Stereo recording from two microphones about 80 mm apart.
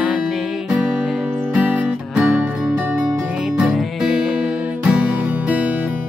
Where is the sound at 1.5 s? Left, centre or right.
Right.